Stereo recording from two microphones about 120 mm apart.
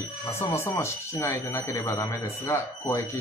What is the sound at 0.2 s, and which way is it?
Speech, 25° left (ahead or behind).